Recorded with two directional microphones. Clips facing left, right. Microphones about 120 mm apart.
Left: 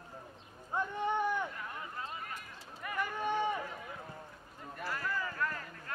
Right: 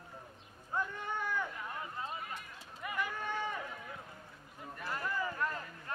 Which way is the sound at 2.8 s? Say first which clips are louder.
Left 1 dB; 10° right (ahead or behind).